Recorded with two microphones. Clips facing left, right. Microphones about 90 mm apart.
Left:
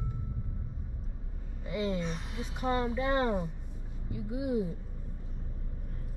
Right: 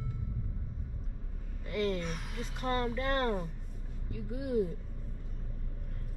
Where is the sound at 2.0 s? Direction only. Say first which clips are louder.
Left 2 dB; centre (ahead or behind).